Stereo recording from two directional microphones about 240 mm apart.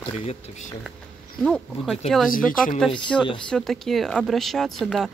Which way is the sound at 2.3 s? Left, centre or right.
Left.